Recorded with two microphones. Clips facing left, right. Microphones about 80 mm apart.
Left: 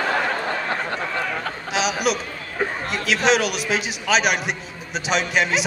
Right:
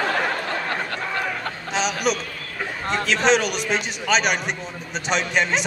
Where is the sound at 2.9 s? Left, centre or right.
Centre.